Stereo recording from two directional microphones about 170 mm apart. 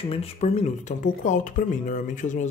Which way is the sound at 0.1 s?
35° left (ahead or behind).